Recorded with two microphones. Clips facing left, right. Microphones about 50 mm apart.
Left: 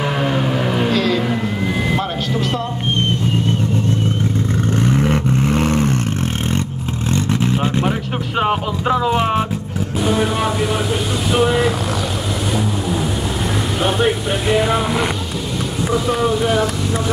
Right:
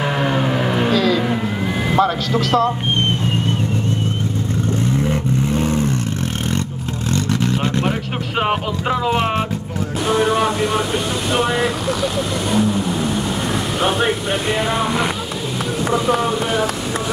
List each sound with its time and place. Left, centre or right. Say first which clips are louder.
0.0 s vehicle: even; centre
4.9 s vehicle: left 2 dB; left
7.4 s a sound: left 1 dB; centre
10.0 s speech: right 2 dB; centre
12.5 s vehicle: right 4 dB; centre
13.7 s speech: left 1 dB; centre